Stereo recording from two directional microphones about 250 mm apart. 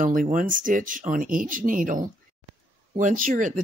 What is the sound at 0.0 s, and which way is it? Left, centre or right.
Speech, right.